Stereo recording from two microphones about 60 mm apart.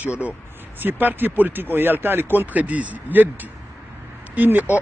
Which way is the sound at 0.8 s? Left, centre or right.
Right.